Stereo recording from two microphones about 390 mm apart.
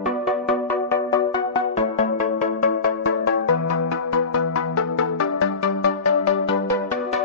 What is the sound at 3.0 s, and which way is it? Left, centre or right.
Music, left.